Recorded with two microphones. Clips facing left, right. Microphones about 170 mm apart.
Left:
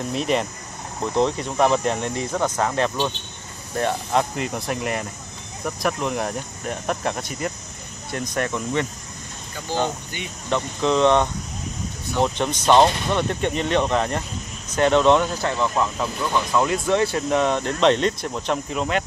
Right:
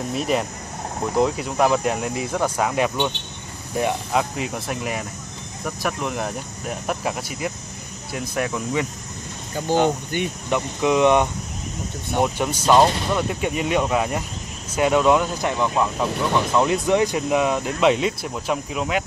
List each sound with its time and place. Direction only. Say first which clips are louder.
0.1 s speech: even; 5° right (ahead or behind)
9.6 s speech: right 5 dB; 50° right (ahead or behind)
10.5 s speech: even; 10° right (ahead or behind)